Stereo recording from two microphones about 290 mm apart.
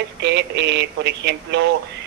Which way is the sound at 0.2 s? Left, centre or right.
Right.